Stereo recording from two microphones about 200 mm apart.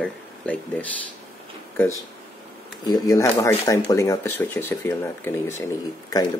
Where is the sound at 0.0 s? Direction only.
5° left (ahead or behind).